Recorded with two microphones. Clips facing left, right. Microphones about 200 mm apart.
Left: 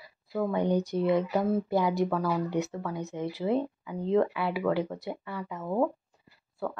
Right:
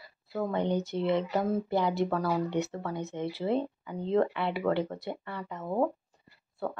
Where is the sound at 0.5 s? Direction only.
20° right (ahead or behind).